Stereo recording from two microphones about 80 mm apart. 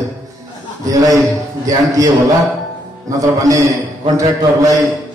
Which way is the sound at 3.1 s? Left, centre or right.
Right.